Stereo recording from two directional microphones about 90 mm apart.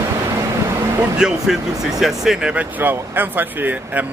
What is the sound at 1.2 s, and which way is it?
Speech, 5° right (ahead or behind).